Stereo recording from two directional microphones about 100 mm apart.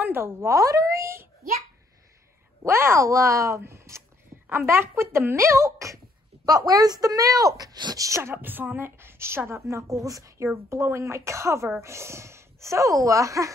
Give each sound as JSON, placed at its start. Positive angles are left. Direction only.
{"t": 0.0, "sound": "speech", "side_deg": -25}
{"t": 2.6, "sound": "speech", "side_deg": -30}